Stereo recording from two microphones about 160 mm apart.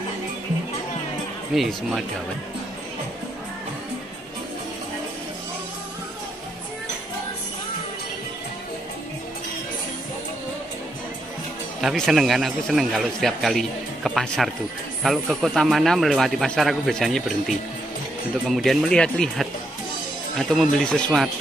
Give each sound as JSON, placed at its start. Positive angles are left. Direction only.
{"t": 1.5, "sound": "a man's voice", "side_deg": 0}
{"t": 11.8, "sound": "a man's voice", "side_deg": 0}